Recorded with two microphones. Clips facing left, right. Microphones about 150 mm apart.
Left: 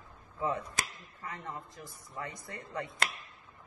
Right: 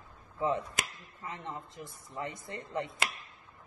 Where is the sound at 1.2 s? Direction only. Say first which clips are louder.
Right 1 dB; 20° right (ahead or behind).